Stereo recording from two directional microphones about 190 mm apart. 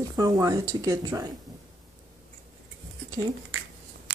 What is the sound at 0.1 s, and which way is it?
Speech, 20° right (ahead or behind).